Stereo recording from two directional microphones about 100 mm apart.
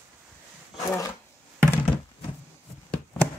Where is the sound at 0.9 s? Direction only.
30° left (ahead or behind).